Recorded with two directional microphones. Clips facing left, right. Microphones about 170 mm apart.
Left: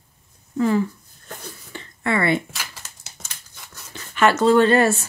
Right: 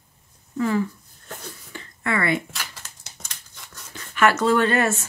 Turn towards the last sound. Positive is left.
turn(degrees=30)  # may be behind; listen again after turning